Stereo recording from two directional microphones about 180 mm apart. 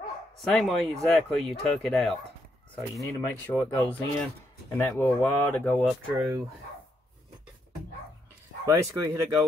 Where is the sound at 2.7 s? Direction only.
10° left (ahead or behind).